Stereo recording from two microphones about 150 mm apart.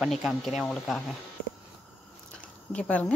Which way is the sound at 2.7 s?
10° left (ahead or behind).